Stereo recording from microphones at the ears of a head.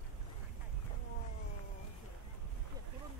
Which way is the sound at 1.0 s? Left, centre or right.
Left.